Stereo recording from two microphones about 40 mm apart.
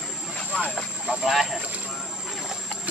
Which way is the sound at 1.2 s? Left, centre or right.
Centre.